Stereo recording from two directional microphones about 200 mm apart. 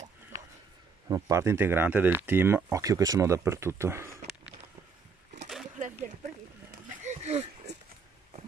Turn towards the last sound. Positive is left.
turn(degrees=-35)  # may be behind; listen again after turning